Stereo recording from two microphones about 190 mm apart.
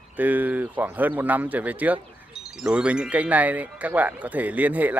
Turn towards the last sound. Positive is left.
turn(degrees=-10)  # may be behind; listen again after turning